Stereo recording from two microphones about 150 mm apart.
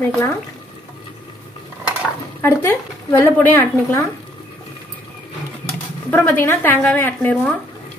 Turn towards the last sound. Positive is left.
turn(degrees=10)  # may be behind; listen again after turning